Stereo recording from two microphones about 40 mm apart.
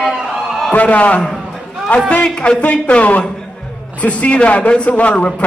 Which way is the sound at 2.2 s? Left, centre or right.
Centre.